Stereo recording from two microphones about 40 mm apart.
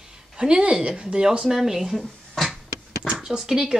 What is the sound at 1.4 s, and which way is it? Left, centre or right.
Speech, centre.